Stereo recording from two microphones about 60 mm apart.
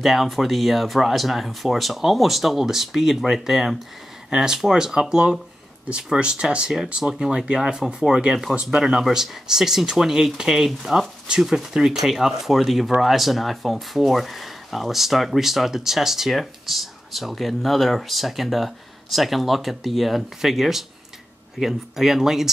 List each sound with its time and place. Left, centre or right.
0.0 s speech: centre